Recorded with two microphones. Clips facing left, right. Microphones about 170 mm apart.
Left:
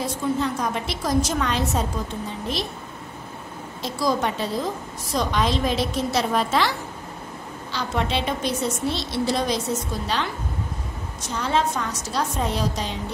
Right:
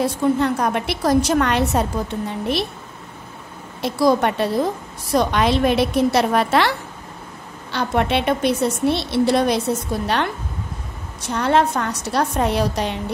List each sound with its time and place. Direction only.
0.0 s a woman's voice: 60° right (ahead or behind)
3.8 s a woman's voice: 60° right (ahead or behind)